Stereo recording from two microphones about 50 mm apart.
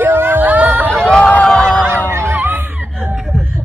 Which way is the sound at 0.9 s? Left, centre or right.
Centre.